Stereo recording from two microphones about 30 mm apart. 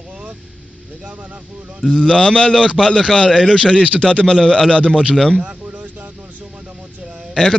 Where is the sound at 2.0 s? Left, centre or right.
Left.